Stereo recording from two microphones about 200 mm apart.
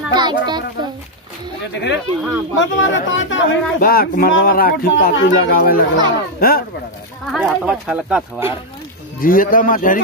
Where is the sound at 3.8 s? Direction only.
45° left (ahead or behind).